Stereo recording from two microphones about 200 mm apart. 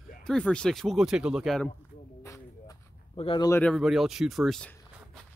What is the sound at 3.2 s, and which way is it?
Speech, 25° left (ahead or behind).